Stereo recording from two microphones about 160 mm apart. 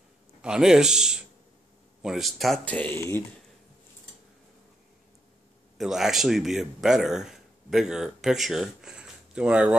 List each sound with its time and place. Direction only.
0.4 s speech: 5° right (ahead or behind); by 3.3 s 15° left (ahead or behind)
5.8 s a man's voice: 5° right (ahead or behind)